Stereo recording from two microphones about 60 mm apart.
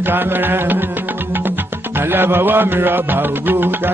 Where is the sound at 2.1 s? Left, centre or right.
Right.